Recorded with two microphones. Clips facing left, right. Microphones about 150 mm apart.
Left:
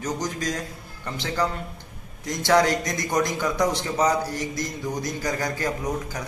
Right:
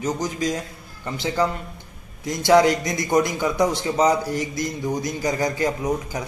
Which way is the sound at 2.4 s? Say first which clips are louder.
Right 4 dB; 10° right (ahead or behind).